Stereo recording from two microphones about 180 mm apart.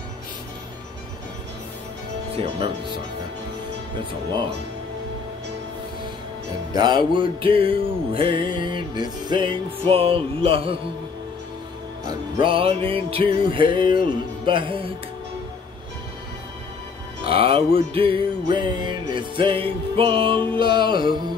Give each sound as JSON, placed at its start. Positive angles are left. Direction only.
{"t": 2.3, "sound": "music", "side_deg": -30}
{"t": 6.7, "sound": "music", "side_deg": -25}
{"t": 12.1, "sound": "music", "side_deg": -30}
{"t": 17.2, "sound": "music", "side_deg": -30}